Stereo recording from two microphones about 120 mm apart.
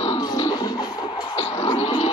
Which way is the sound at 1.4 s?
65° left (ahead or behind).